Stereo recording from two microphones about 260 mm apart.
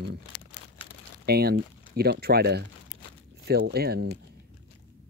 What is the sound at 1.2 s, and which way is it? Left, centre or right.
Speech, right.